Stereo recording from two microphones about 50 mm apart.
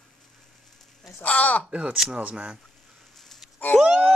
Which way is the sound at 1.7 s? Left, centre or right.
Right.